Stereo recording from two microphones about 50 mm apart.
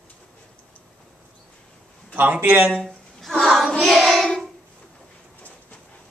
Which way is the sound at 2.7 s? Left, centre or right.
Centre.